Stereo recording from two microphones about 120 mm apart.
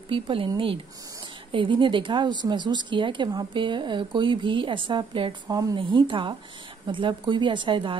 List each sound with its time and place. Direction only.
0.1 s a woman's voice: 50° right (ahead or behind)
1.5 s a woman's voice: 45° right (ahead or behind)
5.5 s speech: 30° right (ahead or behind)
5.8 s a woman's voice: 45° right (ahead or behind)